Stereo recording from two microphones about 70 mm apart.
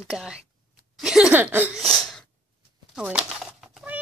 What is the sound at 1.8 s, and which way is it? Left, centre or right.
Sneeze, centre.